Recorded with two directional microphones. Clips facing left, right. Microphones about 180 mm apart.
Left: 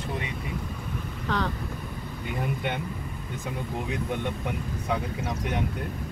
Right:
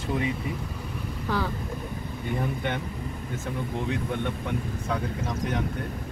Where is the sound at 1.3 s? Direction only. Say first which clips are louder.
Even; 10° right (ahead or behind).